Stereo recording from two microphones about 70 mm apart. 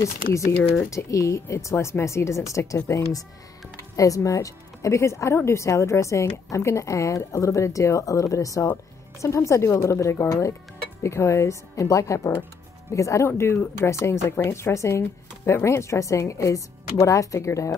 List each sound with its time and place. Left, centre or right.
0.0 s speech: left
13.4 s speech: left